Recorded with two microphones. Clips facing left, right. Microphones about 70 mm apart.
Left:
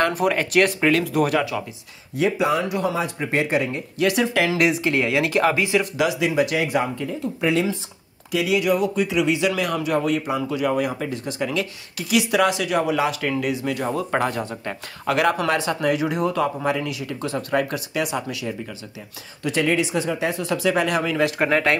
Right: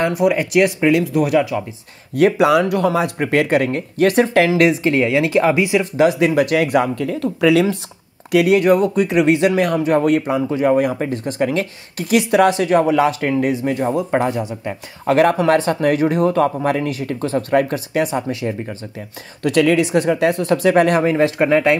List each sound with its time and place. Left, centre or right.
0.1 s speech: centre
2.1 s speech: right
4.5 s speech: right
5.9 s speech: right
8.3 s speech: right
15.0 s speech: right
19.4 s speech: right
21.4 s speech: right